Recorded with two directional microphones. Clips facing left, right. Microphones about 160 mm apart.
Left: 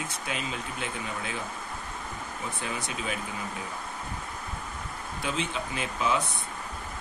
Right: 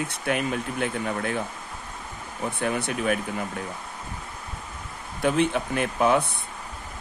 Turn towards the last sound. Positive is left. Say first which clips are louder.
# right 7 dB
turn(degrees=-55)  # may be behind; listen again after turning